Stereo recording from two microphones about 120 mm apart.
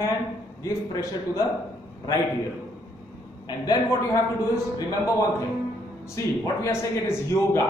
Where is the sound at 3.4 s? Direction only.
30° left (ahead or behind).